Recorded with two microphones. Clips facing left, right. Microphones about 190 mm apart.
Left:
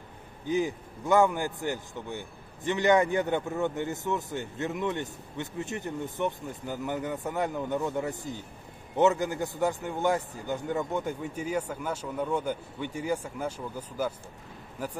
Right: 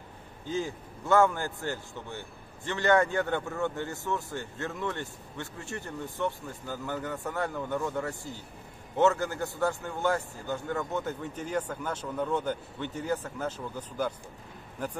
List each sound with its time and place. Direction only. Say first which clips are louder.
0.5 s a man's voice: left 5 dB; 15° left (ahead or behind)